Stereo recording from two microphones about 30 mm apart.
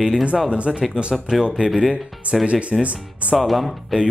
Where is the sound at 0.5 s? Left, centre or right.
Right.